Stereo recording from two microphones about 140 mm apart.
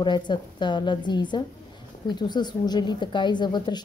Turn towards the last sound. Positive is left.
turn(degrees=30)  # may be behind; listen again after turning